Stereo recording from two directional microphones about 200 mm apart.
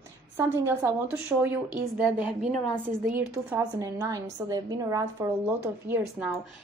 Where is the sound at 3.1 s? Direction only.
15° right (ahead or behind).